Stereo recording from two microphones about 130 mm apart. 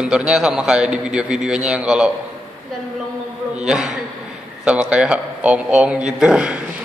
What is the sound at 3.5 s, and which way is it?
A man's voice, 5° right (ahead or behind).